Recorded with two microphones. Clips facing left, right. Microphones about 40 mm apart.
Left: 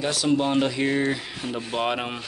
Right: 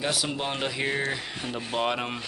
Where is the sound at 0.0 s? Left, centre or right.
Centre.